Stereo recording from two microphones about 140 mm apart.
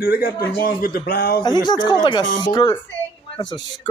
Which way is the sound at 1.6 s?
30° left (ahead or behind).